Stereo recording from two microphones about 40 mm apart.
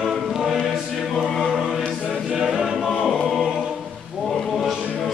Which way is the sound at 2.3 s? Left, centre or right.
Centre.